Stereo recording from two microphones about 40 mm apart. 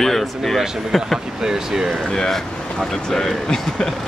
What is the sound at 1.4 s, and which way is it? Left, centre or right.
Speech, centre.